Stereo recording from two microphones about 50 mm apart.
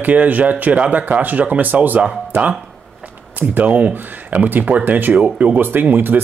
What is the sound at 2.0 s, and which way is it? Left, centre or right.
Speech, right.